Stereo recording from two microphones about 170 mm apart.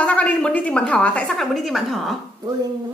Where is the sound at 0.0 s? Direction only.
10° left (ahead or behind).